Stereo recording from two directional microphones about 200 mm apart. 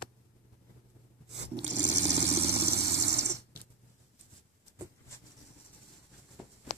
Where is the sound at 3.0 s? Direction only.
60° right (ahead or behind).